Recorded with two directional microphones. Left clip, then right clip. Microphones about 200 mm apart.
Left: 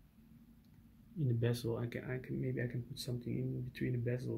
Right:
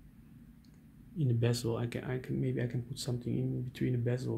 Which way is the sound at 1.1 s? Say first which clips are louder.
Right 4 dB; 5° right (ahead or behind).